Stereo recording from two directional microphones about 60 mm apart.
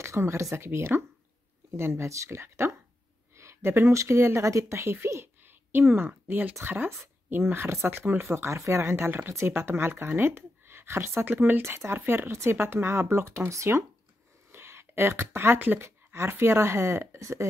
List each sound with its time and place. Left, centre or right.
0.0 s speech: right
5.4 s a sound: right
6.2 s speech: right
8.8 s speech: right
11.2 s speech: right
11.6 s speech: right
13.5 s speech: right
14.5 s speech: right
16.1 s speech: right
17.2 s speech: right